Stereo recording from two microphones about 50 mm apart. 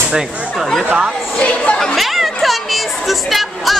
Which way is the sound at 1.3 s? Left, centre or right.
Left.